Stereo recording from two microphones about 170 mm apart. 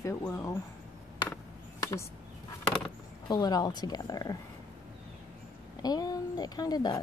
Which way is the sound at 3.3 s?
20° left (ahead or behind).